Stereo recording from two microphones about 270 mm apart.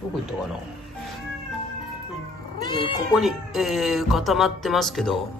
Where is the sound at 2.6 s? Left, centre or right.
Centre.